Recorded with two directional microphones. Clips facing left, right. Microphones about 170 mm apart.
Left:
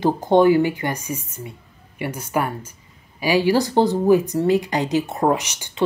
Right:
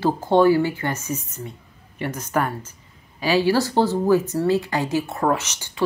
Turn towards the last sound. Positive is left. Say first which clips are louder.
# left 2 dB
turn(degrees=15)  # may be behind; listen again after turning